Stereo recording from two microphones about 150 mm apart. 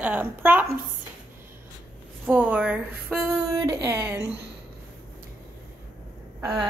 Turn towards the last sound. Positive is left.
turn(degrees=-5)  # may be behind; listen again after turning